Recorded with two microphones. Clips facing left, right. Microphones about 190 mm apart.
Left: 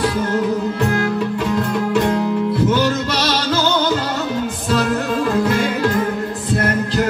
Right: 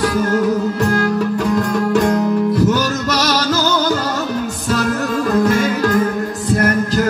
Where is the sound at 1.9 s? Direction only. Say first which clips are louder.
Right 3 dB; 40° right (ahead or behind).